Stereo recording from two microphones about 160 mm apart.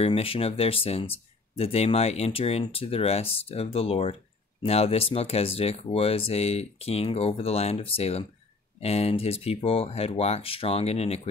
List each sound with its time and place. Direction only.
0.0 s speech: 35° left (ahead or behind)